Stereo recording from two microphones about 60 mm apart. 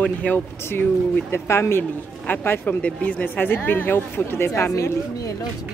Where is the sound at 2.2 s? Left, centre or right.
Left.